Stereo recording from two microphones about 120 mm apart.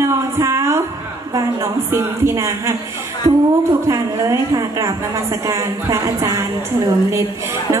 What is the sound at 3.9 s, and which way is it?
A woman's voice, 30° right (ahead or behind).